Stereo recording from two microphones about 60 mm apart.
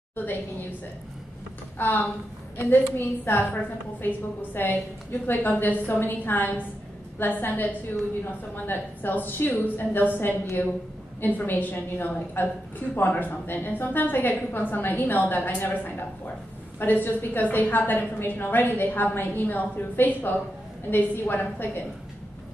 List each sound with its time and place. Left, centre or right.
0.1 s a woman's voice: left
1.8 s a woman's voice: left